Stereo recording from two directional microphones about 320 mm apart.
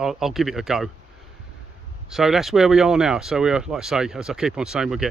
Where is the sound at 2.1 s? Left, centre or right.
Centre.